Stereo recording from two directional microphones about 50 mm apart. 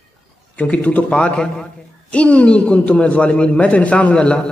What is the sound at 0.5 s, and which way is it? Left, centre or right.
Speech, left.